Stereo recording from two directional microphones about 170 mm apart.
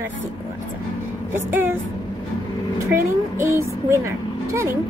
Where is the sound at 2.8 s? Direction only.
15° right (ahead or behind).